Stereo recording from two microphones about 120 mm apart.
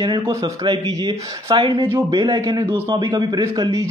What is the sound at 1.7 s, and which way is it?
Speech, 20° right (ahead or behind).